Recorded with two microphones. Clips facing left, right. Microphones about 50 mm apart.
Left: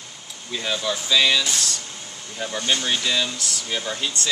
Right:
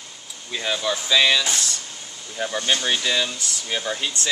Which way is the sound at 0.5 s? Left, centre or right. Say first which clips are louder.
Right 1 dB; centre.